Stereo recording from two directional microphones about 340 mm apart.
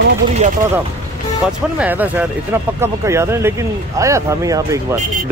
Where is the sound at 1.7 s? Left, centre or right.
Centre.